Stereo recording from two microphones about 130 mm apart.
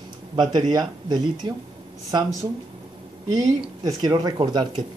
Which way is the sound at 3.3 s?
25° right (ahead or behind).